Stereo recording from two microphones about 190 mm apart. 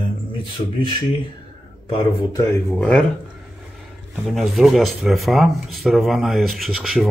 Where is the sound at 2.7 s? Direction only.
5° left (ahead or behind).